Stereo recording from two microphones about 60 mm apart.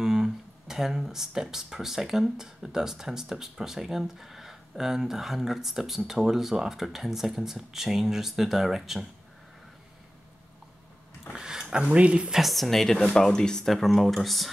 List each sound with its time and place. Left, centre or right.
0.0 s speech: centre
11.3 s a sound: centre
11.7 s speech: centre
12.4 s speech: centre